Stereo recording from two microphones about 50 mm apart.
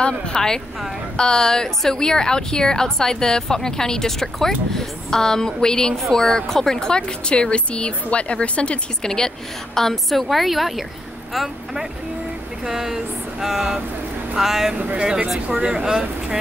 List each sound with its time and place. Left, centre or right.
0.3 s a woman's voice: centre
9.0 s a woman's voice: centre
11.3 s a sound: centre